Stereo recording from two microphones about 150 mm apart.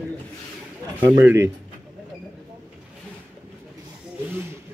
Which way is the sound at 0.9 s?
15° right (ahead or behind).